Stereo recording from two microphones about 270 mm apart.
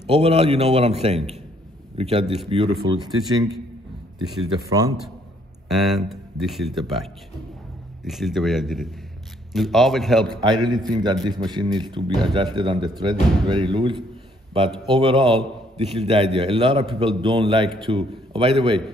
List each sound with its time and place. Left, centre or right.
0.0 s a man's voice: right
4.6 s a man's voice: centre
5.7 s speech: centre
10.2 s a man's voice: centre